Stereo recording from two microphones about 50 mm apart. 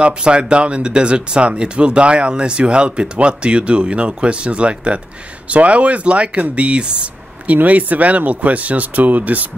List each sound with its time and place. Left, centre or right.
0.0 s speech: right
7.5 s speech: right